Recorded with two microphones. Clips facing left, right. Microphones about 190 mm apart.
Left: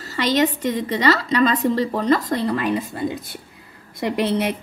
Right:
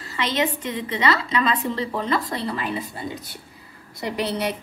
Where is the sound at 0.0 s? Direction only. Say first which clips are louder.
Left 5 dB; 40° left (ahead or behind).